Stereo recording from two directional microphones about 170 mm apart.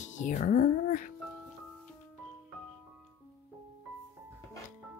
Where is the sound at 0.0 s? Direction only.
45° left (ahead or behind).